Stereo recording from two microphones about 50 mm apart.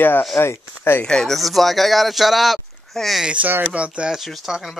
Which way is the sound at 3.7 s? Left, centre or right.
Right.